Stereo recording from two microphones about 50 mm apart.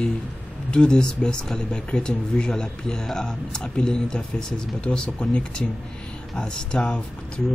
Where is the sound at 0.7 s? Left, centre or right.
Centre.